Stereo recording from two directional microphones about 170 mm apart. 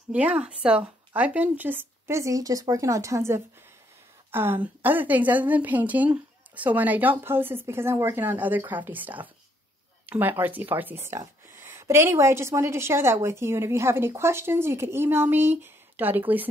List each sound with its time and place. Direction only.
0.1 s a woman's voice: 10° right (ahead or behind)